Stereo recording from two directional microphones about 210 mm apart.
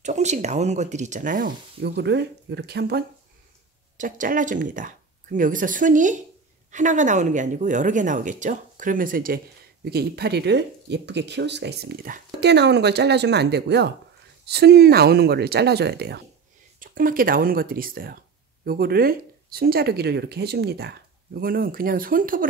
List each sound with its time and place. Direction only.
0.0 s speech: 35° right (ahead or behind); by 3.1 s 50° right (ahead or behind)
4.0 s speech: 40° right (ahead or behind)